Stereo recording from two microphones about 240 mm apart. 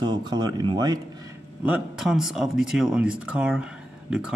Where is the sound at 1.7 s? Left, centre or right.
Centre.